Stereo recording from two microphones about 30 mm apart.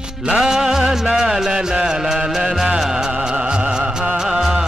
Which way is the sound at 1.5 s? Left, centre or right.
Right.